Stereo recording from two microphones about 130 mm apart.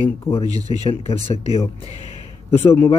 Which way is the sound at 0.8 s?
50° left (ahead or behind).